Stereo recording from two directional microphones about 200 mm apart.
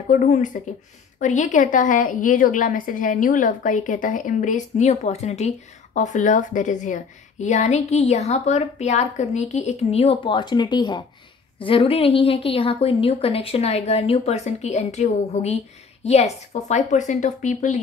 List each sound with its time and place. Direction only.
0.1 s a woman's voice: 35° left (ahead or behind)